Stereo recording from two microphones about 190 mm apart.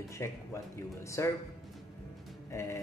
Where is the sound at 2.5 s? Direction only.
15° left (ahead or behind).